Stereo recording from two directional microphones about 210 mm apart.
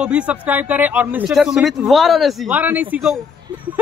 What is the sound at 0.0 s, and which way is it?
Speech, 5° right (ahead or behind).